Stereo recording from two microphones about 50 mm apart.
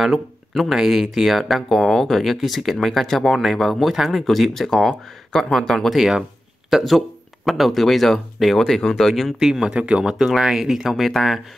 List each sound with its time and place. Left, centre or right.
0.0 s speech: centre
5.9 s speech: centre
9.4 s speech: centre
9.8 s speech: right
10.1 s speech: centre